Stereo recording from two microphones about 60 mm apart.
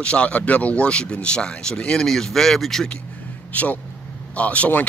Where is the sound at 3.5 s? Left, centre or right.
Left.